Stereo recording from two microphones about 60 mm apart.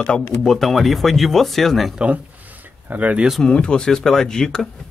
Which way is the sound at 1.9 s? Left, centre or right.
Right.